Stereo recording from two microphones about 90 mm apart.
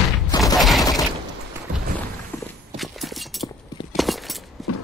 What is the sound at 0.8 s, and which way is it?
Mechanisms, 40° left (ahead or behind).